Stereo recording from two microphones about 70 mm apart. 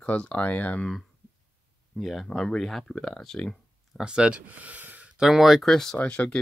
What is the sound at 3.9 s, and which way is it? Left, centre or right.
Speech, centre.